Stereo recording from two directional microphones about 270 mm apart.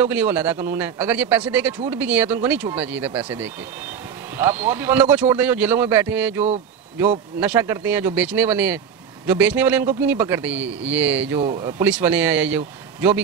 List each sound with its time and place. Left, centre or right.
0.0 s speech: centre
11.3 s speech: centre
11.8 s speech: centre